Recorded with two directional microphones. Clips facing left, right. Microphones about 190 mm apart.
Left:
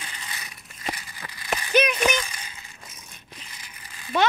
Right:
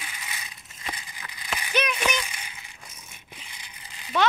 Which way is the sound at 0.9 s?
15° right (ahead or behind).